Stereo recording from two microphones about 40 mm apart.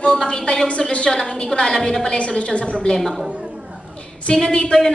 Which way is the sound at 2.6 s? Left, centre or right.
Centre.